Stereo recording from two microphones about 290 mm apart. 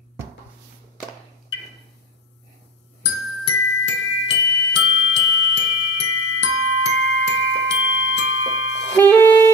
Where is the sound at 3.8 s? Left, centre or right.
Left.